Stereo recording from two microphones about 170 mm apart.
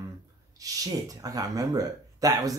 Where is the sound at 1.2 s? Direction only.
20° right (ahead or behind).